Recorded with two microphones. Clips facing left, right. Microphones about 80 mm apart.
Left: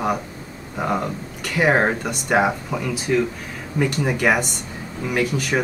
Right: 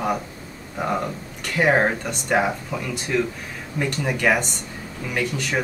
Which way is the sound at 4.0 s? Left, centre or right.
Centre.